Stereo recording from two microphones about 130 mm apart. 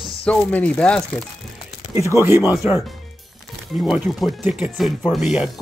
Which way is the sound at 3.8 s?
5° right (ahead or behind).